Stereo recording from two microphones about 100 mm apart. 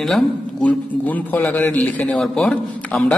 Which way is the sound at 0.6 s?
15° left (ahead or behind).